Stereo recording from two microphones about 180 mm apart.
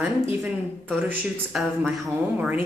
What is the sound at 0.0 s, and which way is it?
A woman's voice, 10° right (ahead or behind).